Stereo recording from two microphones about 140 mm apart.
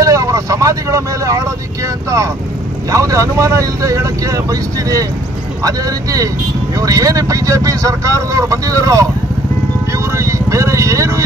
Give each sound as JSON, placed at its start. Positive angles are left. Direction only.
{"t": 0.0, "sound": "speech", "side_deg": -25}
{"t": 2.9, "sound": "speech", "side_deg": -25}
{"t": 10.1, "sound": "vehicle", "side_deg": -20}